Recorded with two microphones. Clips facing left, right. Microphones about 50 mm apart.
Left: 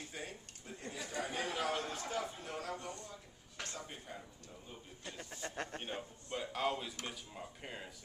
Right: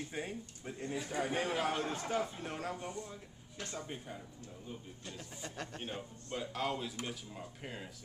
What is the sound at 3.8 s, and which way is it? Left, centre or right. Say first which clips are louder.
Speech: right 4 dB; centre.